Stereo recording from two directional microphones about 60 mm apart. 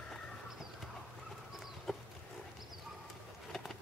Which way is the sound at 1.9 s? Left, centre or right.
Centre.